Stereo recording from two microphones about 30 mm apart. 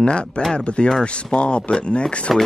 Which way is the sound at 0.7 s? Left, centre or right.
Left.